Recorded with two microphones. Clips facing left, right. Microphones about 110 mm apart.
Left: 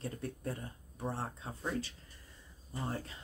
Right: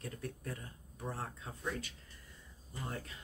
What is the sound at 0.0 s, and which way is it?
Speech, 30° left (ahead or behind).